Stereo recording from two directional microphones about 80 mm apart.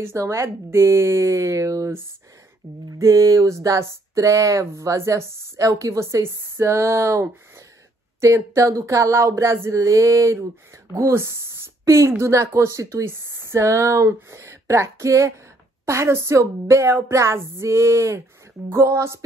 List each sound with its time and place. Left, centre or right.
0.1 s speech: right
3.0 s a woman's voice: right